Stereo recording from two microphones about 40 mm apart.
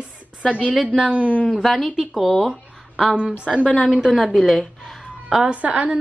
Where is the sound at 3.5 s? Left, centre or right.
Centre.